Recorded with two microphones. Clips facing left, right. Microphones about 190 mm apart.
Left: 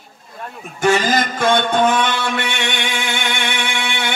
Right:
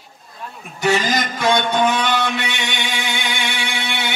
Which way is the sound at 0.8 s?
50° left (ahead or behind).